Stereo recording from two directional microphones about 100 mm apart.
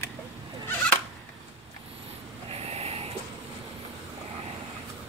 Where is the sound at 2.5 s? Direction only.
90° right.